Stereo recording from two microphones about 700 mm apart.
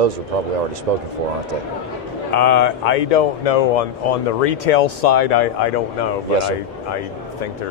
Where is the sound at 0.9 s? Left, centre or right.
Right.